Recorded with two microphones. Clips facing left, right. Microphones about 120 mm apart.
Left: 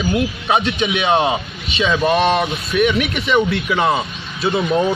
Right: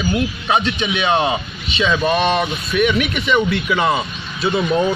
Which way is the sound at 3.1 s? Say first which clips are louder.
Left 1 dB; 30° left (ahead or behind).